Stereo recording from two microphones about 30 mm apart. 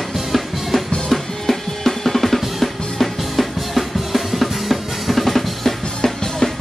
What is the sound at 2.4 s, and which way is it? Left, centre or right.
Music, centre.